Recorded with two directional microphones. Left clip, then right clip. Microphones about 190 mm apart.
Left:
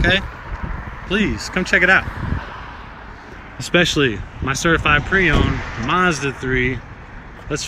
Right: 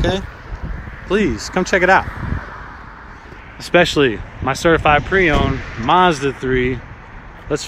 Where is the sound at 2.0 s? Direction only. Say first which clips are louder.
Even; 35° left (ahead or behind).